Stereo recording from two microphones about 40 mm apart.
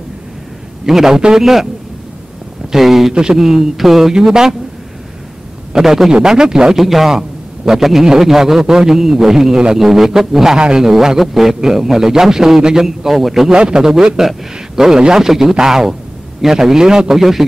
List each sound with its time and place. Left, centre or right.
0.8 s a man's voice: centre
2.7 s a man's voice: centre
5.7 s a man's voice: centre
6.8 s a man's voice: centre
13.5 s a man's voice: right